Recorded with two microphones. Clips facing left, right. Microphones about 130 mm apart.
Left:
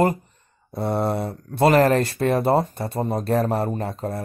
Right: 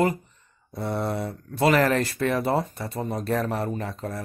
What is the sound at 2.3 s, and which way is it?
Speech, 50° left (ahead or behind).